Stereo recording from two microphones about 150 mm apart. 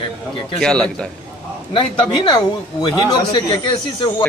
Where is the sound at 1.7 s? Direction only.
30° left (ahead or behind).